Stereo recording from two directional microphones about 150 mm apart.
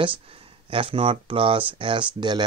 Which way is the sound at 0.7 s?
35° right (ahead or behind).